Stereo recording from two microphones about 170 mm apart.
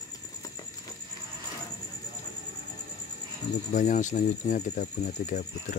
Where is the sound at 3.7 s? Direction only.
45° left (ahead or behind).